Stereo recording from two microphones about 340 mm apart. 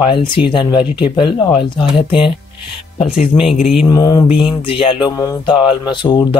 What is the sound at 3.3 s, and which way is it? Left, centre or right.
Speech, centre.